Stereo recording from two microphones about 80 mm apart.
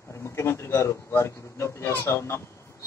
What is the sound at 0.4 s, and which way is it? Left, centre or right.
A man's voice, left.